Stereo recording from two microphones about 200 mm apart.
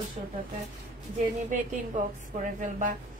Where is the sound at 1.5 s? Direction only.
40° right (ahead or behind).